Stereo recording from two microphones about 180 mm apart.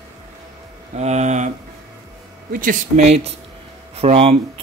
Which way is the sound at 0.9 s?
40° right (ahead or behind).